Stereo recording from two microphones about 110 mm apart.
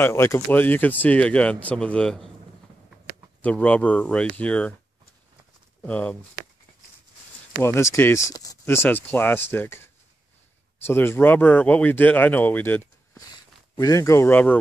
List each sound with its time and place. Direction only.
0.0 s speech: 25° left (ahead or behind); by 2.3 s 5° left (ahead or behind)
3.4 s speech: 15° left (ahead or behind)
5.8 s speech: 15° left (ahead or behind)
7.6 s speech: 25° left (ahead or behind)
8.6 s speech: 20° left (ahead or behind)
10.9 s speech: 20° left (ahead or behind)
13.3 s speech: 35° left (ahead or behind); by 14.6 s 15° left (ahead or behind)